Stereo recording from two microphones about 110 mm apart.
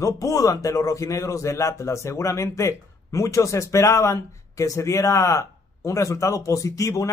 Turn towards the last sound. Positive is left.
turn(degrees=30)  # may be behind; listen again after turning